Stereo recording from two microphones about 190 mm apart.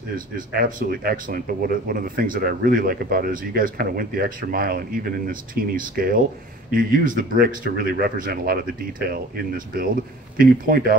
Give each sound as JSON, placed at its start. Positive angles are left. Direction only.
{"t": 0.5, "sound": "speech", "side_deg": -50}
{"t": 10.4, "sound": "speech", "side_deg": -50}